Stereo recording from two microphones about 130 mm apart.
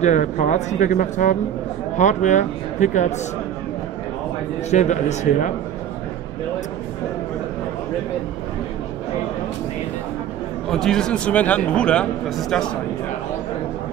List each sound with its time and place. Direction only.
0.0 s speech: 70° left (ahead or behind)
4.6 s speech: 65° left (ahead or behind)
10.7 s a man's voice: 5° left (ahead or behind)